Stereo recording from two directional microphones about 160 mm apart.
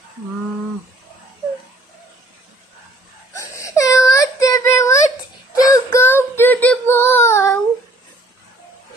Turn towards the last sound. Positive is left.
turn(degrees=15)  # may be behind; listen again after turning